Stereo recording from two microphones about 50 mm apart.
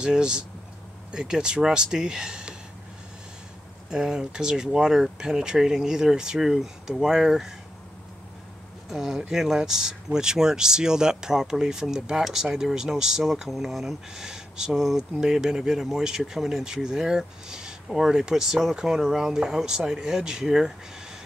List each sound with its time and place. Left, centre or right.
0.0 s speech: centre
3.9 s speech: centre
8.9 s speech: centre